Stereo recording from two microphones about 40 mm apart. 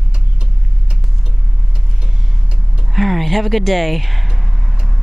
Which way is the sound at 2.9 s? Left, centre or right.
Centre.